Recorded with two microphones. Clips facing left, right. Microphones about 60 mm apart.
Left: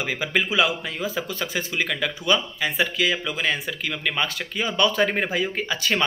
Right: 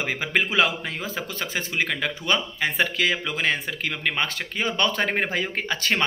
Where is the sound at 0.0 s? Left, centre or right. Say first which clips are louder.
Even; right.